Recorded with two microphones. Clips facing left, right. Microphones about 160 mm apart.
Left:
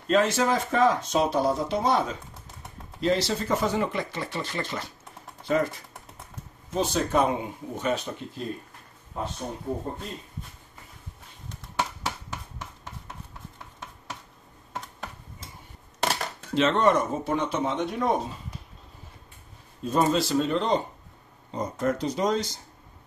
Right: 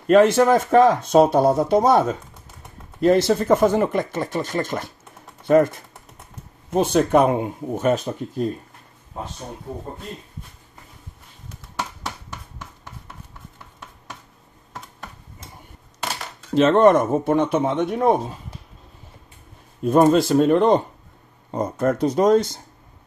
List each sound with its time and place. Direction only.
0.0 s speech: 60° right (ahead or behind)
16.5 s speech: 50° right (ahead or behind)
19.8 s speech: 55° right (ahead or behind)